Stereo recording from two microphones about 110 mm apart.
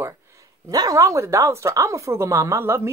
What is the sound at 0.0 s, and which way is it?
Speech, 30° right (ahead or behind).